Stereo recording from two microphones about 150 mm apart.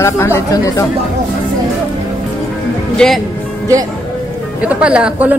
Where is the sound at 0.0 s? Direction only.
20° left (ahead or behind).